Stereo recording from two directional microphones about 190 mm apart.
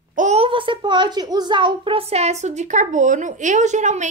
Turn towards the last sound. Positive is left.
turn(degrees=-40)  # may be behind; listen again after turning